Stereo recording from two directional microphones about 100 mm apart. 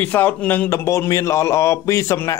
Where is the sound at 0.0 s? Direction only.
15° left (ahead or behind).